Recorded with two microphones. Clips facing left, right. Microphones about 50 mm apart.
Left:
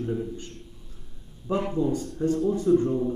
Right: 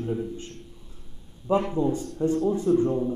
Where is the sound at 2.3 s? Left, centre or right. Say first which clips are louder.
Even; right.